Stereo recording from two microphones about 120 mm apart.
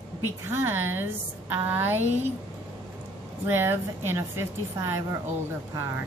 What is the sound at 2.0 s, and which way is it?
Speech, 65° right (ahead or behind).